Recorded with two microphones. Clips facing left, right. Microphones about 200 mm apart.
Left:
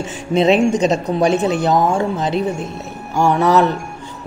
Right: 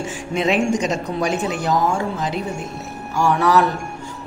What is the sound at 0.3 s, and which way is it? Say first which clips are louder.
A woman's voice: left 6 dB; 30° left (ahead or behind).